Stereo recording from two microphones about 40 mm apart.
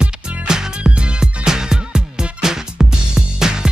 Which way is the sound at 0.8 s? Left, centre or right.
Right.